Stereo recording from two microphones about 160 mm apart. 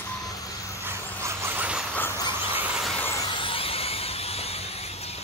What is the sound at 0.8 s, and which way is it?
Vehicle, 15° right (ahead or behind).